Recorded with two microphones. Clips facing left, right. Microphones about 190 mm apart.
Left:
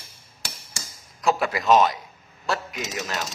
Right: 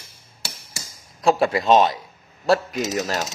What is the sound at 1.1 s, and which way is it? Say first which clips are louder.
A man's voice: right 5 dB; 30° right (ahead or behind).